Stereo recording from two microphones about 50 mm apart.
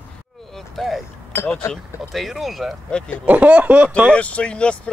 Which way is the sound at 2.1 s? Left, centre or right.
Centre.